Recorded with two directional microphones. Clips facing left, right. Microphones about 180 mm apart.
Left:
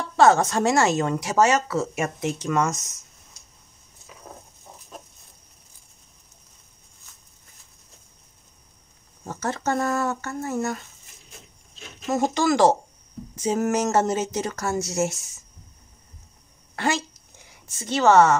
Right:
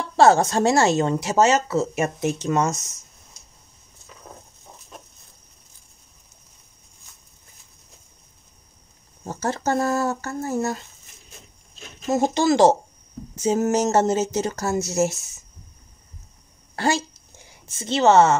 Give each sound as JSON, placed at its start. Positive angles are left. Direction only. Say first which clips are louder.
{"t": 0.2, "sound": "speech", "louder": "right 2 dB", "side_deg": -30}
{"t": 9.2, "sound": "speech", "louder": "right 2 dB", "side_deg": -30}
{"t": 12.1, "sound": "speech", "louder": "right 2 dB", "side_deg": -25}
{"t": 16.7, "sound": "speech", "louder": "right 2 dB", "side_deg": -35}